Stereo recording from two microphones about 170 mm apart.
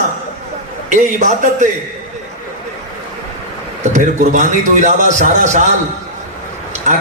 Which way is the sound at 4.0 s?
45° right (ahead or behind).